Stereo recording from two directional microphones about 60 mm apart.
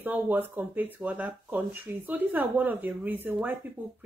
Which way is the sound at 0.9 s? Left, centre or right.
Right.